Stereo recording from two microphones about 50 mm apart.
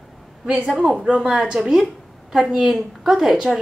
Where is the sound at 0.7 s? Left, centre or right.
Centre.